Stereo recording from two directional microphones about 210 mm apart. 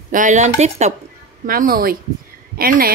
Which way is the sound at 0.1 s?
35° right (ahead or behind).